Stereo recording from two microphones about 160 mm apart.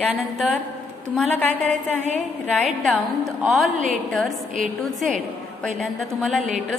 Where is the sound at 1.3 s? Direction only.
10° left (ahead or behind).